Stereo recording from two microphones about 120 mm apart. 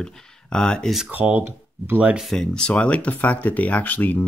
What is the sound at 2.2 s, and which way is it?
Speech, 5° left (ahead or behind).